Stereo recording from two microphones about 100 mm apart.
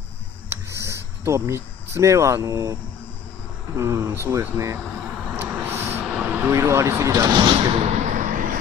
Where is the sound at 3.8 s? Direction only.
25° right (ahead or behind).